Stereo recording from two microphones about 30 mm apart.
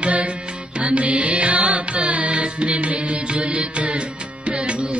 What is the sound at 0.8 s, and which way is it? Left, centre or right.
Music, right.